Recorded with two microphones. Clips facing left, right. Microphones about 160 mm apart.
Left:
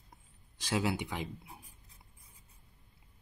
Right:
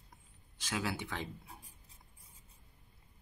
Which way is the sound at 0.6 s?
35° left (ahead or behind).